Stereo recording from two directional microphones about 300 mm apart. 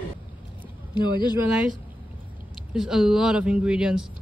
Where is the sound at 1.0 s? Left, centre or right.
Centre.